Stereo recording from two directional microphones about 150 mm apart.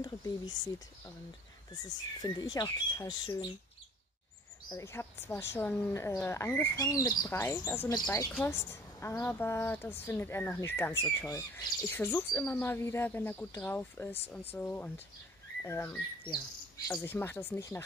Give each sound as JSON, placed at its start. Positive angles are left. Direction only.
{"t": 0.0, "sound": "speech", "side_deg": 25}
{"t": 2.4, "sound": "speech", "side_deg": 25}
{"t": 4.6, "sound": "a woman's voice", "side_deg": 20}
{"t": 16.3, "sound": "chirp", "side_deg": 25}
{"t": 16.9, "sound": "a woman's voice", "side_deg": 15}